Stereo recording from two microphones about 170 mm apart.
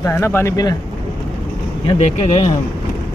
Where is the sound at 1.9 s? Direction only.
40° left (ahead or behind).